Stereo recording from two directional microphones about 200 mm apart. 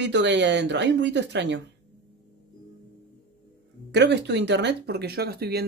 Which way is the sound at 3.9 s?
60° right (ahead or behind).